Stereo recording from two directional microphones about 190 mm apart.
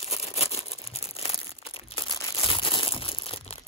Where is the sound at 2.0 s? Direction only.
25° left (ahead or behind).